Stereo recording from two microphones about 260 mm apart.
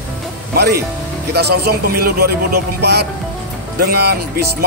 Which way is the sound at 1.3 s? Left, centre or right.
Right.